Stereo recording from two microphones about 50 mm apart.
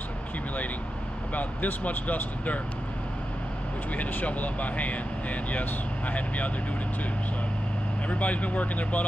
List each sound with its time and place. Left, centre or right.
1.3 s speech: left
3.9 s speech: left
8.1 s speech: left